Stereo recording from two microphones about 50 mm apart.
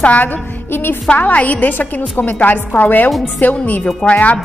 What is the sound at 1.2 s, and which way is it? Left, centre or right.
A woman's voice, left.